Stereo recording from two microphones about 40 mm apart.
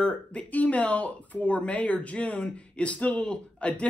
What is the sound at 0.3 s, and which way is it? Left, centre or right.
Speech, left.